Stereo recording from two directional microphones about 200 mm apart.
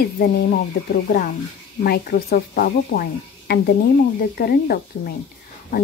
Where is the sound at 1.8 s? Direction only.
50° left (ahead or behind).